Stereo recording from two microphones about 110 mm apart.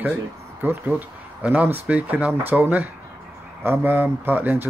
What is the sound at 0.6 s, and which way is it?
Speech, 15° right (ahead or behind).